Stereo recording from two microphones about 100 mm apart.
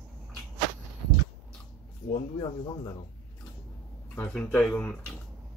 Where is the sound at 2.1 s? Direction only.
45° left (ahead or behind).